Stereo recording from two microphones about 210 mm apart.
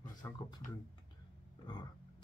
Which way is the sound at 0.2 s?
15° left (ahead or behind).